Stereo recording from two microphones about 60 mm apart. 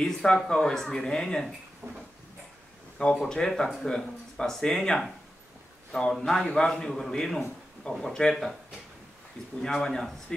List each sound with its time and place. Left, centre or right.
0.0 s speech: centre
1.8 s a sound: right
3.2 s speech: centre
9.6 s speech: centre